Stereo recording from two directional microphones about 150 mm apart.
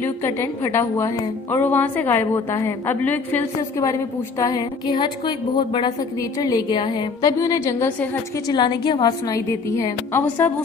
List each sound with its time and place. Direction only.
0.0 s a woman's voice: 15° left (ahead or behind)
4.4 s a woman's voice: 25° left (ahead or behind)